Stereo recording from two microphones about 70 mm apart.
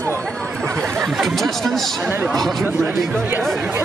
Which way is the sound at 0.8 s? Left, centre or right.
Centre.